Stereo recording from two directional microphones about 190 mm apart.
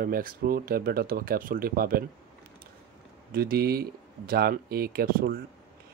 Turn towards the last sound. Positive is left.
turn(degrees=-50)  # may be behind; listen again after turning